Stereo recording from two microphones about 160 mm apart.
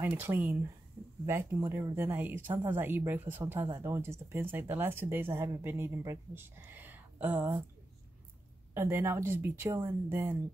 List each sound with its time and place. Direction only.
0.0 s speech: 15° right (ahead or behind)
8.7 s speech: 15° right (ahead or behind)